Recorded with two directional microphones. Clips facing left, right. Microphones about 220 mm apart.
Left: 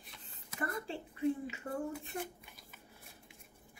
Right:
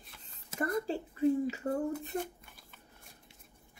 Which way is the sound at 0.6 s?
40° right (ahead or behind).